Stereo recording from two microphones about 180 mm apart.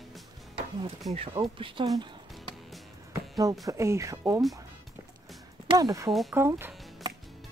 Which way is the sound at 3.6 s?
15° right (ahead or behind).